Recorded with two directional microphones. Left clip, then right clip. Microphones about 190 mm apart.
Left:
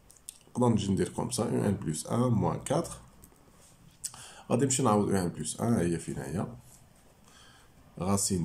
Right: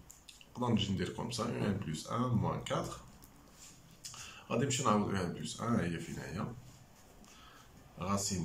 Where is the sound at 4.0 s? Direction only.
35° left (ahead or behind).